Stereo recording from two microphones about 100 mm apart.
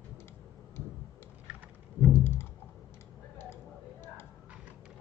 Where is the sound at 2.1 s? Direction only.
25° left (ahead or behind).